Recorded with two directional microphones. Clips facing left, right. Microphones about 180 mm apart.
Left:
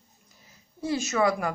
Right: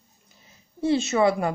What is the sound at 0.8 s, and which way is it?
Speech, 25° right (ahead or behind).